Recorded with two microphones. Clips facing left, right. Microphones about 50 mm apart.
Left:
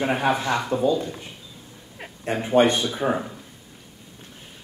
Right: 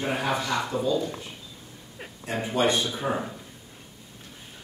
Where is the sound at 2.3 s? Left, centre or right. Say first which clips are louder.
Left 6 dB; left.